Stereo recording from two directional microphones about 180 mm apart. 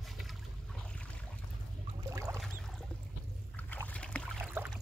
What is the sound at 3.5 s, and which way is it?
Boat, 10° left (ahead or behind).